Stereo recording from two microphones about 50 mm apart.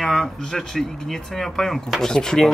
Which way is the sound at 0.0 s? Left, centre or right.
Centre.